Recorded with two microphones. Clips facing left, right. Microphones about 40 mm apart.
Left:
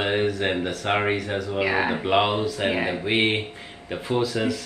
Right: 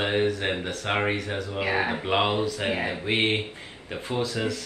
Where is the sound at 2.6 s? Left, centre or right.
Left.